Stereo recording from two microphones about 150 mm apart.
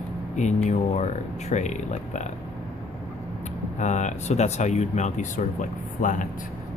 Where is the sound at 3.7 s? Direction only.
55° left (ahead or behind).